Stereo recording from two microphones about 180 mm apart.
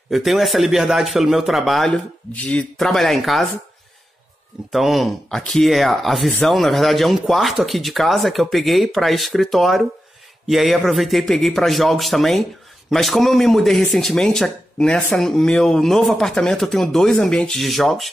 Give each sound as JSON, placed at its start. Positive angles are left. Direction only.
{"t": 0.1, "sound": "speech", "side_deg": 0}
{"t": 4.7, "sound": "speech", "side_deg": 0}